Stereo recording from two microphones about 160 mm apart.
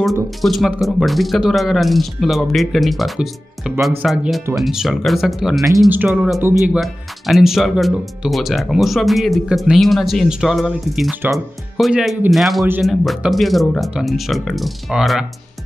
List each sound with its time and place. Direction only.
0.4 s speech: centre (ahead or behind)